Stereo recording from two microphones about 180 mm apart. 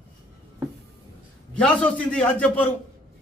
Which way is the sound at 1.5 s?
5° left (ahead or behind).